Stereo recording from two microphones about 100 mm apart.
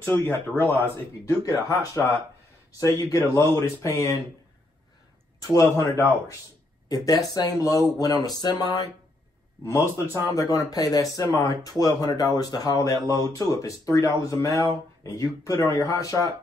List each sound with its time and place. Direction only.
0.0 s speech: 20° left (ahead or behind)
1.2 s speech: 30° left (ahead or behind)
5.4 s speech: 35° left (ahead or behind)
9.7 s speech: 30° left (ahead or behind)